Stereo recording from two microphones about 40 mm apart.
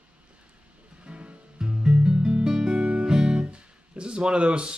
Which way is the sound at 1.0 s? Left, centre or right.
Right.